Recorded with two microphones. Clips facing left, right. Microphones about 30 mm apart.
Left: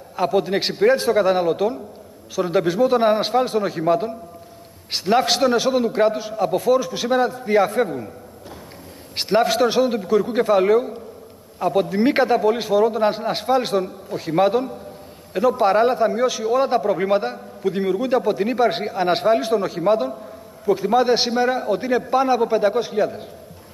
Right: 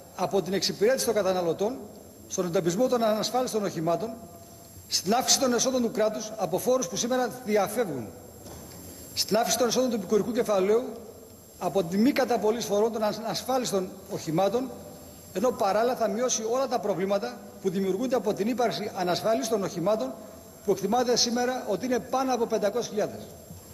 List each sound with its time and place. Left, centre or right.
0.1 s a man's voice: left
9.1 s a man's voice: left